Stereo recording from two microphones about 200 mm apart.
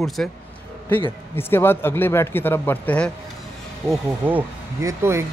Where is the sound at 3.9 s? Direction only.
10° right (ahead or behind).